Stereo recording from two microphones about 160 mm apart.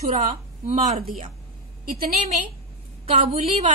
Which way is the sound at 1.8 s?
65° right (ahead or behind).